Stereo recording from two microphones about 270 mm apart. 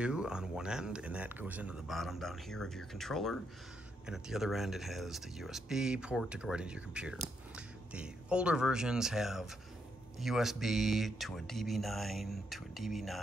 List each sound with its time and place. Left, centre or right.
0.0 s speech: centre